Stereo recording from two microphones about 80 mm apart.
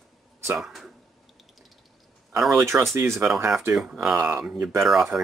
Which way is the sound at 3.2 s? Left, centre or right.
Centre.